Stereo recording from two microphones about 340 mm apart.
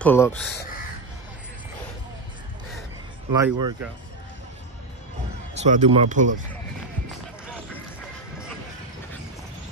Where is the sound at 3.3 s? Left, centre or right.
Centre.